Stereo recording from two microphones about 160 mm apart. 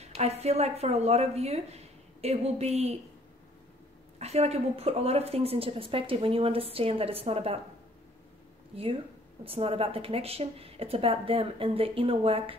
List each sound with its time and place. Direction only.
0.0 s speech: 40° right (ahead or behind)
4.2 s speech: 40° right (ahead or behind)
8.7 s speech: 35° right (ahead or behind)